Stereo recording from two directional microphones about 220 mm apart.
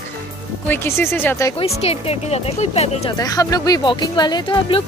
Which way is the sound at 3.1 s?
15° left (ahead or behind).